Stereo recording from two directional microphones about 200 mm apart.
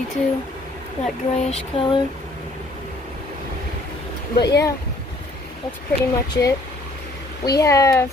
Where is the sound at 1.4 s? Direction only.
30° left (ahead or behind).